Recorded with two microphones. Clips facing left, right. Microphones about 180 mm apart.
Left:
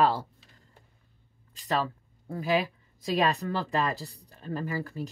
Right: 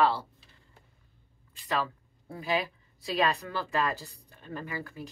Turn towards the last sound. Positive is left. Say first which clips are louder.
# left 5 dB
turn(degrees=40)  # may be behind; listen again after turning